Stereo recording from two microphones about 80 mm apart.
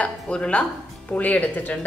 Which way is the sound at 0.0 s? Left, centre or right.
Centre.